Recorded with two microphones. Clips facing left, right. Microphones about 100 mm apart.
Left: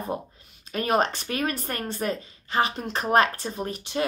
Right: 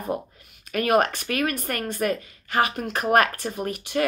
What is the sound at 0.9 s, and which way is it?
Speech, 55° right (ahead or behind).